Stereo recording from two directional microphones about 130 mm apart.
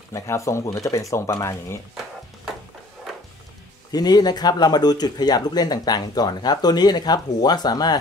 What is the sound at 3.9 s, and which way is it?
Speech, 30° left (ahead or behind).